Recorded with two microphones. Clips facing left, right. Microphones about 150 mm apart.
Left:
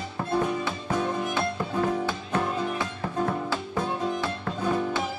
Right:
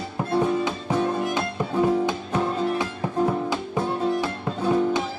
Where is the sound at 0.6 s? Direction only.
15° right (ahead or behind).